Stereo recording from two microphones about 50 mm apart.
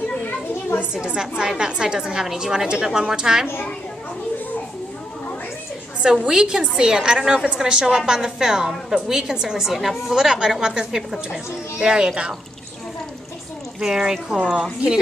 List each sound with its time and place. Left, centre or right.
1.0 s a woman's voice: centre
6.0 s a woman's voice: centre
13.7 s a woman's voice: centre
14.4 s a woman's voice: right